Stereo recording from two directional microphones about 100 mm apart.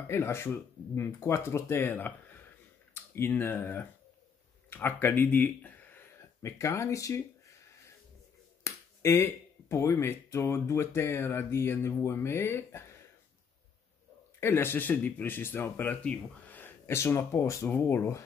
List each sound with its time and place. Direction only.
0.1 s speech: 25° left (ahead or behind)
6.4 s a sound: 30° left (ahead or behind)
8.6 s speech: 25° left (ahead or behind)
14.4 s speech: 25° left (ahead or behind)